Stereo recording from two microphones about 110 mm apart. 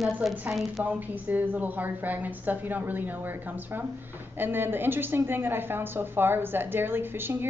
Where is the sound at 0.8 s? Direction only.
15° right (ahead or behind).